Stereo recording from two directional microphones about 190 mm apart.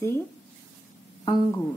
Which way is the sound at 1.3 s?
15° left (ahead or behind).